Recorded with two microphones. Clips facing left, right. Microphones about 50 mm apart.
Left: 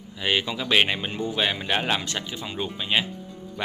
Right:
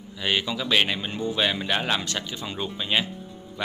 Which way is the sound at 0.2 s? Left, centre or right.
Centre.